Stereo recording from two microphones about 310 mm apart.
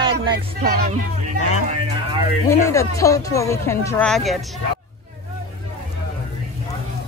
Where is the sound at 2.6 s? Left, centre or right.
Centre.